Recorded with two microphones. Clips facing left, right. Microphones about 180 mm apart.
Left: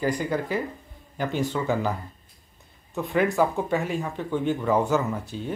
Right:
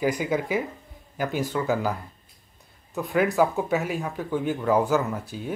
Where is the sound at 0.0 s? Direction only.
10° right (ahead or behind).